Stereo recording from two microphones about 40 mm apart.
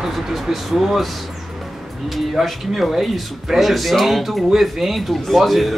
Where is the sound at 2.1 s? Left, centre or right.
Centre.